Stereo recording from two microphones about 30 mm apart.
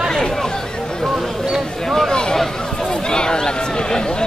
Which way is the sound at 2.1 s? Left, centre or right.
Left.